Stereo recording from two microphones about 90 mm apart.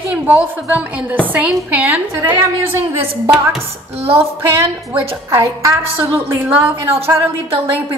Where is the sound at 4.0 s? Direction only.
90° right.